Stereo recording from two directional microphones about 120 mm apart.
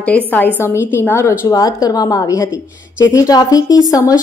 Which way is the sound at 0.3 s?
15° left (ahead or behind).